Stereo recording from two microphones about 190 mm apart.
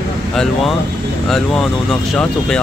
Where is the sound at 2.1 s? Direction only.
5° left (ahead or behind).